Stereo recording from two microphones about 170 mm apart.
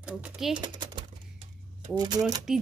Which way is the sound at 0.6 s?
25° right (ahead or behind).